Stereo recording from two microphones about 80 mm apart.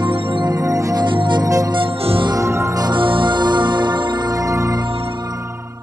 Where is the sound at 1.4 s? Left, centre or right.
Right.